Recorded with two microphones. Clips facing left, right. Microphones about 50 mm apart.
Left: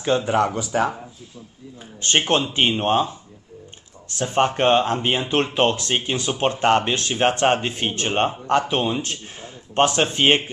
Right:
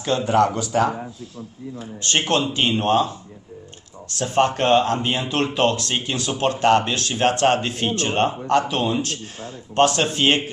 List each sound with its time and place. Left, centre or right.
0.0 s speech: centre